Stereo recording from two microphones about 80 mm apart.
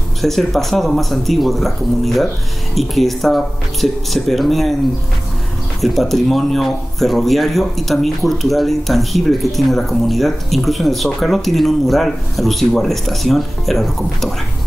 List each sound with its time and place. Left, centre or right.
0.2 s speech: centre
5.8 s speech: centre